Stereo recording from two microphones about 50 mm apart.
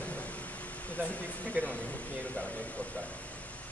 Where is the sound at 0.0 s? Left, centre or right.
Left.